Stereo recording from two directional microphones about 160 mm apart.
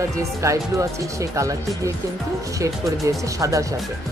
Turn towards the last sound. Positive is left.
turn(degrees=-20)  # may be behind; listen again after turning